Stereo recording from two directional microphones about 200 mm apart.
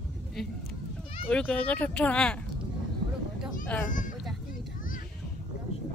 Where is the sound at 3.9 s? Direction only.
40° left (ahead or behind).